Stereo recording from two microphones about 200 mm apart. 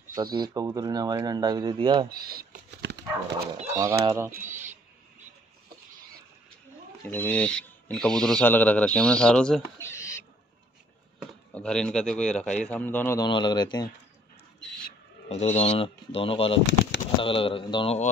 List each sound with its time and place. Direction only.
0.1 s speech: 20° right (ahead or behind)
2.0 s a sound: 50° right (ahead or behind)
4.0 s speech: 20° right (ahead or behind)
7.1 s a man's voice: 10° left (ahead or behind)
9.8 s owl: 15° left (ahead or behind)
11.5 s a man's voice: 5° left (ahead or behind)
13.2 s speech: 20° left (ahead or behind)
14.6 s a sound: 5° left (ahead or behind)
15.2 s speech: 35° left (ahead or behind)